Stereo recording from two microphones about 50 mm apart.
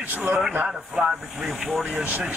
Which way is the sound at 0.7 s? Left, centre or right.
Centre.